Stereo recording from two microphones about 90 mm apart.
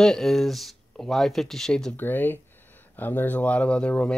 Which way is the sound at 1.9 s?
20° left (ahead or behind).